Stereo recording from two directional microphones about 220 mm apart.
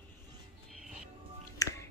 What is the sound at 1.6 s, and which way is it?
Music, 15° left (ahead or behind).